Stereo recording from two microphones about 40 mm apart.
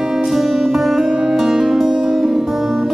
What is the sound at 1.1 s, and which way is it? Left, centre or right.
Music, centre.